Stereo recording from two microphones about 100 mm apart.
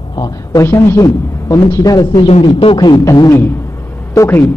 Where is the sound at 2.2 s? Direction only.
70° left (ahead or behind).